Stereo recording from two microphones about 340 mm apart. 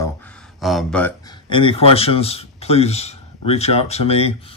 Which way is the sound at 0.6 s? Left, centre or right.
Centre.